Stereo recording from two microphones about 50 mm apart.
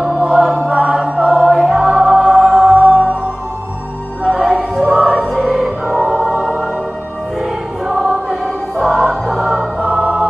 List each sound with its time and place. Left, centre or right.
0.3 s choir: centre
1.4 s music: centre
1.9 s music: right
4.2 s music: centre
6.4 s music: centre
7.9 s music: centre
9.8 s music: right